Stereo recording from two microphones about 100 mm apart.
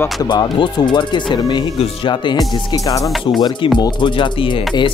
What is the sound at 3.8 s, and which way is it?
Speech, 55° left (ahead or behind).